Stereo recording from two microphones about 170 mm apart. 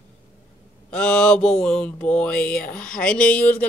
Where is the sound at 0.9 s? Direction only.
5° left (ahead or behind).